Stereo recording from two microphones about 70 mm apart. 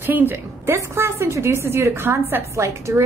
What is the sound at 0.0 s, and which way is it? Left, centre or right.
A woman's voice, right.